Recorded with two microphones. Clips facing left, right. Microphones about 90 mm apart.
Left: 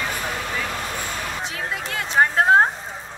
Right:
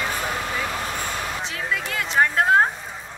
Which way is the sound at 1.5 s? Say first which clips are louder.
Right 1 dB; 30° left (ahead or behind).